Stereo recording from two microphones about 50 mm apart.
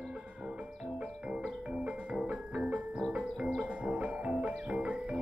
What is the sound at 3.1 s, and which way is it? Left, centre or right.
Music, right.